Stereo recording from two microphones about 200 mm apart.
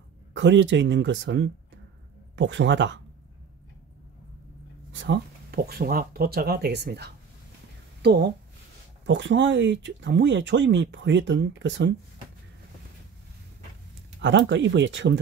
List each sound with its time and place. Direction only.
0.3 s speech: 65° right (ahead or behind)
4.9 s speech: 60° right (ahead or behind)
14.2 s speech: 65° right (ahead or behind)